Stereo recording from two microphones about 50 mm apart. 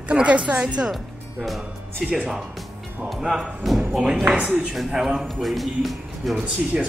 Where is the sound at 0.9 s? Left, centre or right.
Centre.